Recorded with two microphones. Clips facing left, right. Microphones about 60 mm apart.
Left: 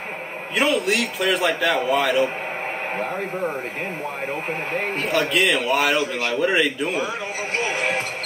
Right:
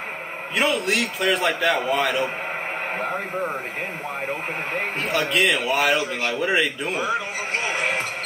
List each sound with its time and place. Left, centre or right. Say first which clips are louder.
0.6 s a man's voice: left 2 dB; centre
5.0 s a man's voice: left 1 dB; centre